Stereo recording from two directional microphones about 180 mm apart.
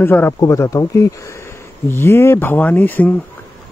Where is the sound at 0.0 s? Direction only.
10° left (ahead or behind).